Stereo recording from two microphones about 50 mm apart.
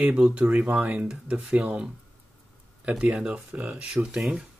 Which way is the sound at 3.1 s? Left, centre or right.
Centre.